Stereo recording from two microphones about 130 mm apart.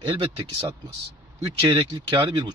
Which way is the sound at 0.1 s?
40° right (ahead or behind).